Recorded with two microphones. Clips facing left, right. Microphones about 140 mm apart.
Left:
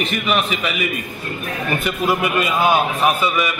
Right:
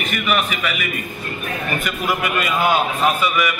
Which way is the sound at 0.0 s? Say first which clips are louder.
Left 1 dB; 25° left (ahead or behind).